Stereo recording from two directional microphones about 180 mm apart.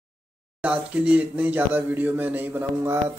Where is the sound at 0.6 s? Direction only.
5° right (ahead or behind).